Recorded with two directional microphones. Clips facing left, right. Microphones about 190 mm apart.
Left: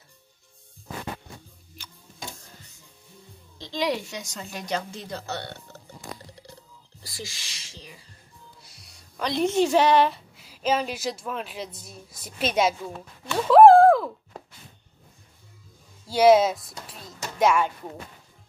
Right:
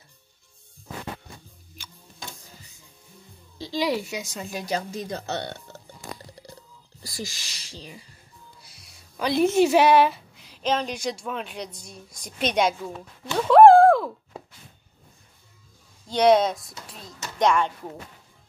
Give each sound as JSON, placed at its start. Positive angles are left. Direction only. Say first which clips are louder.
{"t": 3.5, "sound": "a woman's voice", "louder": "right 2 dB", "side_deg": -5}
{"t": 7.0, "sound": "speech", "louder": "right 4 dB", "side_deg": -40}
{"t": 8.5, "sound": "speech", "louder": "even", "side_deg": 0}
{"t": 16.1, "sound": "speech", "louder": "left 1 dB", "side_deg": 5}